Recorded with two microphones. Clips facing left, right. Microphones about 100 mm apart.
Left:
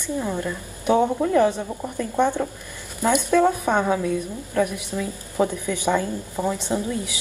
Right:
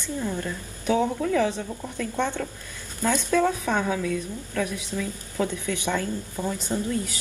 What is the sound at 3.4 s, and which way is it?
A woman's voice, 25° left (ahead or behind).